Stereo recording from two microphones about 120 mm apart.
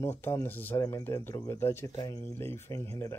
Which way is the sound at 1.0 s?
20° left (ahead or behind).